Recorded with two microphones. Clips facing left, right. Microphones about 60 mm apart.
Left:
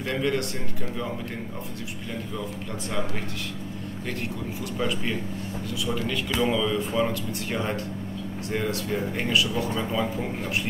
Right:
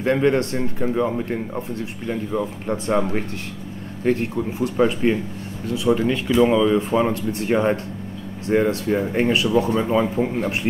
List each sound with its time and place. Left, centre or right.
0.0 s speech: right
2.9 s speech: right
4.0 s speech: right